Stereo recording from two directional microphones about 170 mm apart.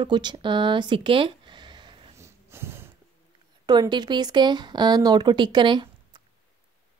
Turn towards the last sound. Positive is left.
turn(degrees=-30)  # may be behind; listen again after turning